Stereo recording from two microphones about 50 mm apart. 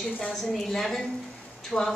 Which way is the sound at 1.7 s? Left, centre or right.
Centre.